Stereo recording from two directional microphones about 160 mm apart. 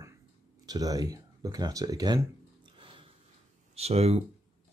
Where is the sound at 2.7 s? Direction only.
30° right (ahead or behind).